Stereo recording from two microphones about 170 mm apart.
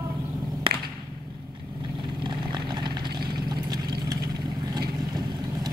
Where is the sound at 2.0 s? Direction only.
25° right (ahead or behind).